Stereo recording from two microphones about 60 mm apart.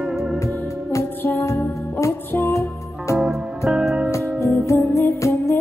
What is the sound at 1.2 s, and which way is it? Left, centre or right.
Music, left.